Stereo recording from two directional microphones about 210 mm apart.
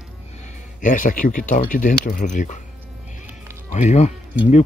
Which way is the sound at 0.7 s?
40° left (ahead or behind).